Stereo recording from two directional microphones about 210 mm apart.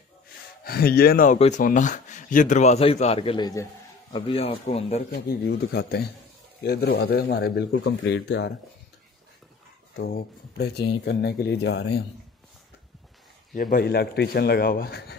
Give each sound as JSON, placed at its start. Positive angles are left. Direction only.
{"t": 0.7, "sound": "a man's voice", "side_deg": 45}
{"t": 5.1, "sound": "speech", "side_deg": 50}
{"t": 9.9, "sound": "speech", "side_deg": 50}
{"t": 13.5, "sound": "speech", "side_deg": 40}